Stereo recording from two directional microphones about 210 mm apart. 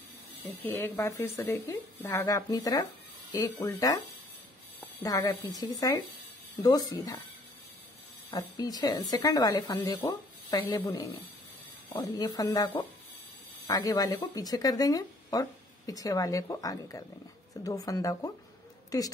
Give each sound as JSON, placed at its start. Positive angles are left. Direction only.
{"t": 0.6, "sound": "speech", "side_deg": 10}
{"t": 8.3, "sound": "speech", "side_deg": 20}